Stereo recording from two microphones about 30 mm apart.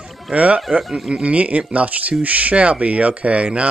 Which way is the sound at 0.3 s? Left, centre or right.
Right.